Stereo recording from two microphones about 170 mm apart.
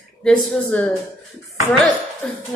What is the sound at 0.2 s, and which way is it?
Speech, 5° left (ahead or behind).